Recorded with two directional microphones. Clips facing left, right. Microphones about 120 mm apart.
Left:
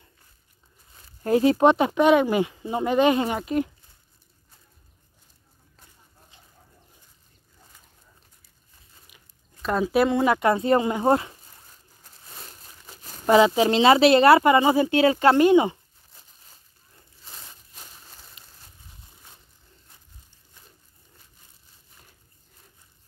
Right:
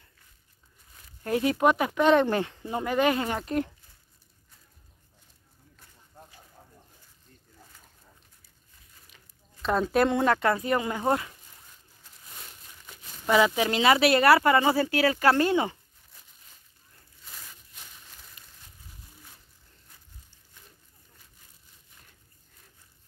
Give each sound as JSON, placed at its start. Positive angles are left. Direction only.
{"t": 1.2, "sound": "speech", "side_deg": 30}
{"t": 2.0, "sound": "speech", "side_deg": 10}
{"t": 3.3, "sound": "speech", "side_deg": 5}
{"t": 9.1, "sound": "a sound", "side_deg": 5}
{"t": 10.3, "sound": "speech", "side_deg": 20}
{"t": 10.6, "sound": "speech", "side_deg": 30}
{"t": 12.8, "sound": "crumpling", "side_deg": 35}
{"t": 13.4, "sound": "speech", "side_deg": 25}
{"t": 17.2, "sound": "a sound", "side_deg": 30}